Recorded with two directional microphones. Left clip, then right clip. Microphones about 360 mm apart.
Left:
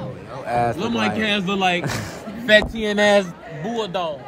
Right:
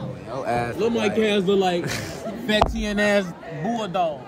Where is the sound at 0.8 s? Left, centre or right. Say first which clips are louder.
Right 1 dB; left.